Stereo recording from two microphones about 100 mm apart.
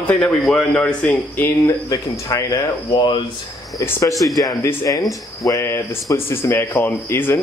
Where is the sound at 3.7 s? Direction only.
30° left (ahead or behind).